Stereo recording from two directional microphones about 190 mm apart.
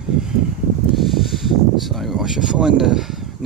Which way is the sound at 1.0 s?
Centre (ahead or behind).